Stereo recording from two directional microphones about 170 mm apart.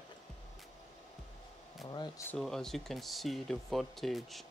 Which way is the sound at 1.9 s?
25° left (ahead or behind).